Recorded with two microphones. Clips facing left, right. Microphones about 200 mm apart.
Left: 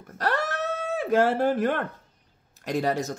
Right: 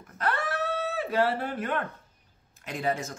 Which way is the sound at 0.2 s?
40° left (ahead or behind).